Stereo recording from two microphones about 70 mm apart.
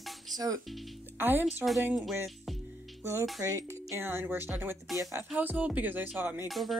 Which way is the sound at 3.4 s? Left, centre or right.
Right.